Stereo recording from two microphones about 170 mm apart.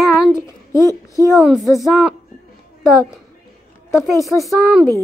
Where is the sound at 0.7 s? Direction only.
15° left (ahead or behind).